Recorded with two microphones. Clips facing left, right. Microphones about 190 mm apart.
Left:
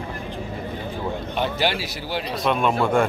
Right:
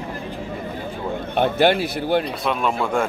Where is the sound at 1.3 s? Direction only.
55° right (ahead or behind).